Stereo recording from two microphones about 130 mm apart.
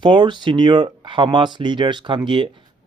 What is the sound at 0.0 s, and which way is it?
Speech, 35° right (ahead or behind).